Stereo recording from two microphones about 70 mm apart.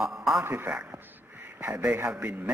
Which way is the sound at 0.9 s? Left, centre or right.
Right.